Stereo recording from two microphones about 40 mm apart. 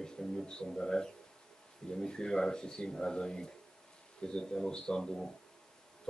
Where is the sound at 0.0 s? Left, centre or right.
Centre.